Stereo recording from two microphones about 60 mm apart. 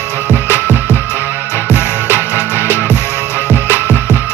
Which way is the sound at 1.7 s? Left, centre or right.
Left.